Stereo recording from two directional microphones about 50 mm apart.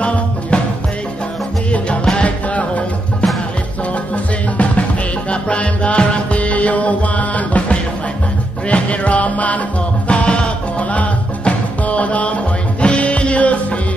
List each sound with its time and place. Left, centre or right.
2.0 s music: left